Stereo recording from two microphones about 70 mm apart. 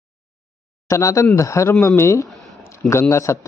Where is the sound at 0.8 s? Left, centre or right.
Left.